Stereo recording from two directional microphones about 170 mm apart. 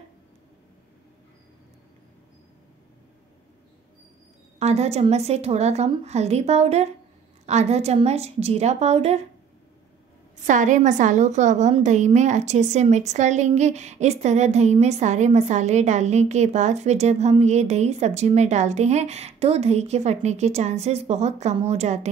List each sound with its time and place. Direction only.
4.6 s a woman's voice: 40° right (ahead or behind)
10.4 s a woman's voice: 50° right (ahead or behind)